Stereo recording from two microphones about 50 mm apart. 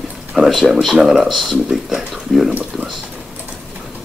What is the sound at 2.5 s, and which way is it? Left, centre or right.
Speech, right.